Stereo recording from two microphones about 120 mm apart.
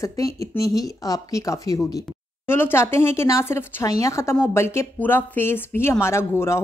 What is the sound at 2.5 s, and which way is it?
Speech, 20° left (ahead or behind).